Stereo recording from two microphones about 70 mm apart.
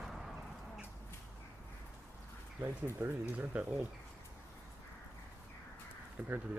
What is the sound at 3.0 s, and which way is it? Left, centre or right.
Speech, right.